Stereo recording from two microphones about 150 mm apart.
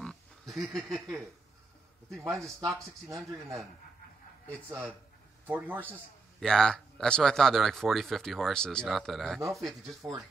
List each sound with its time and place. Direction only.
0.0 s pig: centre (ahead or behind)
2.2 s speech: 20° right (ahead or behind)
4.6 s a man's voice: 15° right (ahead or behind)
6.4 s speech: 5° left (ahead or behind)